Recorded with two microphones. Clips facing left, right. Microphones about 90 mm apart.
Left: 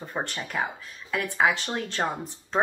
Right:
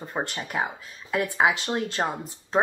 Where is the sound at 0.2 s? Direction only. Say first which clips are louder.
Right 1 dB; 15° right (ahead or behind).